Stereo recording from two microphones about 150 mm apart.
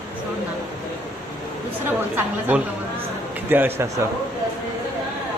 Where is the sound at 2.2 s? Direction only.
10° right (ahead or behind).